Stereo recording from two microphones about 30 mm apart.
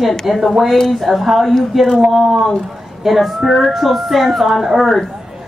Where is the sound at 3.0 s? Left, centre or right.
Centre.